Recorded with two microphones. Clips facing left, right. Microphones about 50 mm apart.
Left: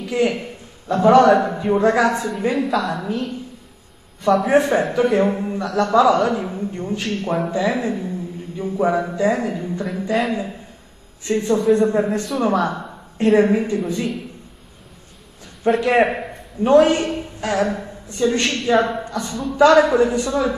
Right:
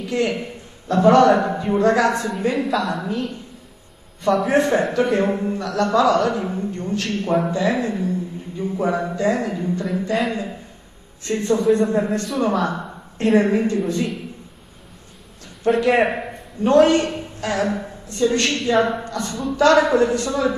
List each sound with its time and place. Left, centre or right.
0.1 s a man's voice: centre
7.2 s a woman's voice: centre
9.8 s a woman's voice: centre
15.6 s a man's voice: centre
16.6 s a woman's voice: centre
19.5 s a man's voice: centre